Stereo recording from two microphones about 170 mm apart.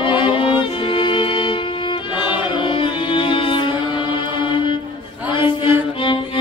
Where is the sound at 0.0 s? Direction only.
30° left (ahead or behind).